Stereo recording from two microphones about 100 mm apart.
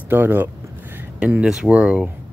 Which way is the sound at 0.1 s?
20° right (ahead or behind).